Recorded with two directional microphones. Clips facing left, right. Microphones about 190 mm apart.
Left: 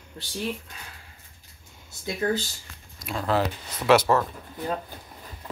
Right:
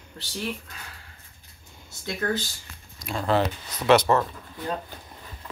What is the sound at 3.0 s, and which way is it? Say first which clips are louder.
Speech: right 1 dB; centre (ahead or behind).